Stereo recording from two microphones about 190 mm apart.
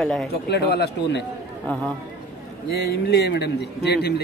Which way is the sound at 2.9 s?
60° left (ahead or behind).